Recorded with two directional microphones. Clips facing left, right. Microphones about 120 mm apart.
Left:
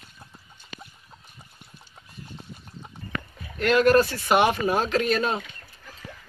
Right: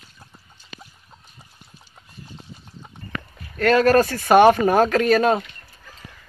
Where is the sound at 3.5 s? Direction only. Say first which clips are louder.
Right 3 dB; 45° right (ahead or behind).